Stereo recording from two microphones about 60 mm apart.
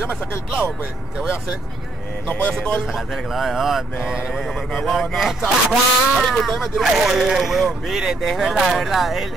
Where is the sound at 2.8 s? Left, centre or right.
Centre.